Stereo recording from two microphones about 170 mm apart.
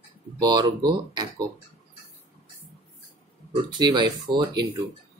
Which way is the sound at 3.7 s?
25° right (ahead or behind).